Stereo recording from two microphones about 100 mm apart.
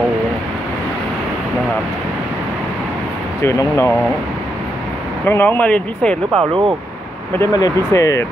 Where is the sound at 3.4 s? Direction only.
30° left (ahead or behind).